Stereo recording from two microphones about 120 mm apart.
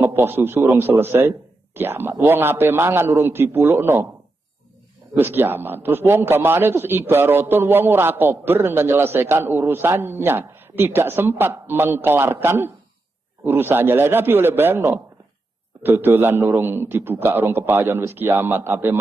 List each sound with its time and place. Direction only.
0.0 s a man's voice: 20° right (ahead or behind)
5.1 s a man's voice: 20° right (ahead or behind)